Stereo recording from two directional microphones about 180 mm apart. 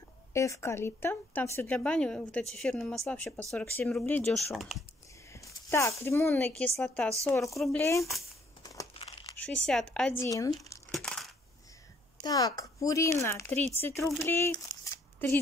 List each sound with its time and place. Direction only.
0.3 s speech: 15° left (ahead or behind)
4.6 s speech: centre (ahead or behind)
5.3 s speech: 15° left (ahead or behind); by 7.8 s centre (ahead or behind)
7.8 s speech: 15° left (ahead or behind)
8.9 s crumpling: 30° left (ahead or behind)
9.4 s speech: 5° left (ahead or behind)
10.2 s speech: 20° left (ahead or behind)
10.9 s crushing: 5° left (ahead or behind)
12.2 s speech: 20° left (ahead or behind)